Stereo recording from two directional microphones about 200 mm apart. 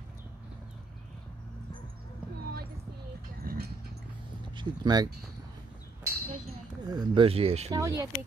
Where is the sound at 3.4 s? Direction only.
50° right (ahead or behind).